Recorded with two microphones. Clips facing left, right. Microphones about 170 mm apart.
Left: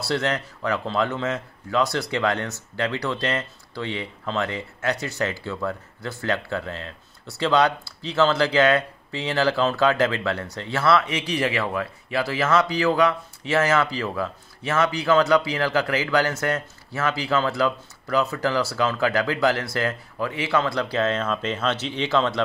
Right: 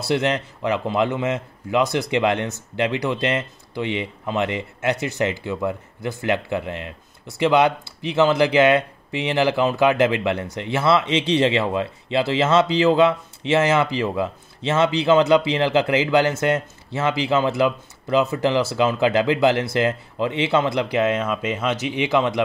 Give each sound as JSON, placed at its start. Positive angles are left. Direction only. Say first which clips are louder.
{"t": 0.0, "sound": "a man's voice", "louder": "right 4 dB", "side_deg": -20}